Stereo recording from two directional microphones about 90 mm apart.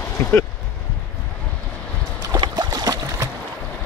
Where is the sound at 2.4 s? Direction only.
50° right (ahead or behind).